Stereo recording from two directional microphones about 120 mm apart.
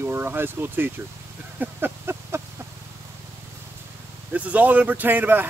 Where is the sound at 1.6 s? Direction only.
15° right (ahead or behind).